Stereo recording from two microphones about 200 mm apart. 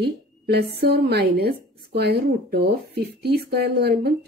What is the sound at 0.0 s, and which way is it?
Speech, 55° right (ahead or behind).